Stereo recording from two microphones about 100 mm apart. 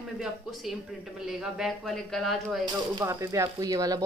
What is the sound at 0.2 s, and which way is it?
A man's voice, centre (ahead or behind).